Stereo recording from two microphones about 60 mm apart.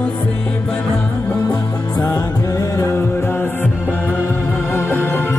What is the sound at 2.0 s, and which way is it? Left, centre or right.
Music, left.